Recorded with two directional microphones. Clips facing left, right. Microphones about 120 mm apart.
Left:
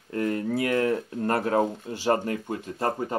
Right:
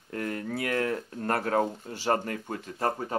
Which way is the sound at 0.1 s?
30° left (ahead or behind).